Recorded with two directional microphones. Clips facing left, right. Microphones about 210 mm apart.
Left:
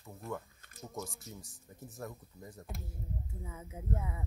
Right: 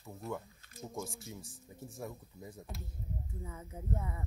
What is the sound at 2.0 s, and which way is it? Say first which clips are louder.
Speech: even; centre (ahead or behind).